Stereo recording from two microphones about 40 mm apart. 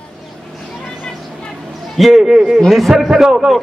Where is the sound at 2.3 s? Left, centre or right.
Centre.